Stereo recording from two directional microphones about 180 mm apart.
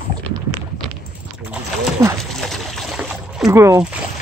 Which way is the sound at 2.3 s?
Centre (ahead or behind).